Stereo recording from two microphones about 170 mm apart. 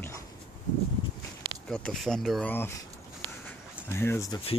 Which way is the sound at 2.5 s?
15° left (ahead or behind).